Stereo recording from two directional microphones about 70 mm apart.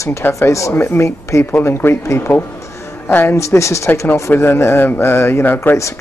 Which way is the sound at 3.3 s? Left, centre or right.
Left.